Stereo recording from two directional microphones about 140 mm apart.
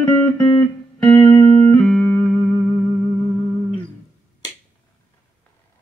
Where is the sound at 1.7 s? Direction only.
5° left (ahead or behind).